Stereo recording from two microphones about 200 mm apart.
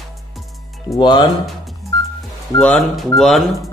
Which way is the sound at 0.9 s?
20° left (ahead or behind).